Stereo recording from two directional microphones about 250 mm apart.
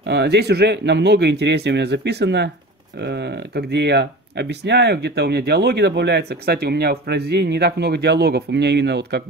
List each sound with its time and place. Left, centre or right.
0.0 s speech: right